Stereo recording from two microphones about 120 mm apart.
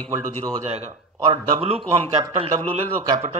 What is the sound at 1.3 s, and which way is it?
Speech, 50° right (ahead or behind).